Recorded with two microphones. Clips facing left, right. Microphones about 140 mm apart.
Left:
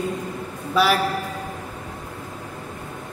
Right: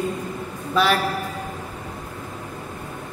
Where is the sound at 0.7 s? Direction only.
5° left (ahead or behind).